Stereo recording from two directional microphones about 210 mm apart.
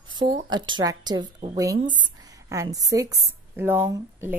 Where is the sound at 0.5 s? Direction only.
20° right (ahead or behind).